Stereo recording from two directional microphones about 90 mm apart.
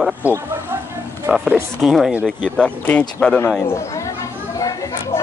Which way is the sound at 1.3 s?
25° right (ahead or behind).